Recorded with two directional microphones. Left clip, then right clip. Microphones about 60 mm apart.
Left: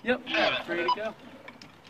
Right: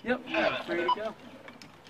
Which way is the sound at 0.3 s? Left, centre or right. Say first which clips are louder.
Left 2 dB; left.